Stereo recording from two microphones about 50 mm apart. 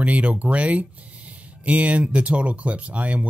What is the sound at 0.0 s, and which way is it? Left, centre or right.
Speech, right.